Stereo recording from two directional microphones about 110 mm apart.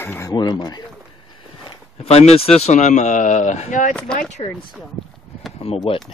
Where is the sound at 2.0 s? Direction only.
70° left (ahead or behind); by 3.7 s 90° left.